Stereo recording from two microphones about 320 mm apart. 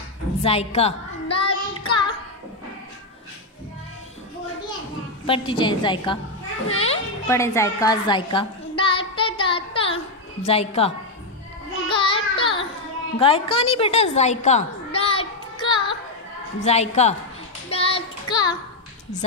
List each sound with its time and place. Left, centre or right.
0.4 s child singing: centre
5.2 s a woman's voice: centre
6.7 s a sound: centre
11.9 s child singing: centre
13.2 s a man's voice: centre
17.6 s child singing: centre